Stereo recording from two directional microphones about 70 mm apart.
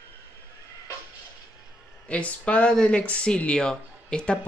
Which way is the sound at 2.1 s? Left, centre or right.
Centre.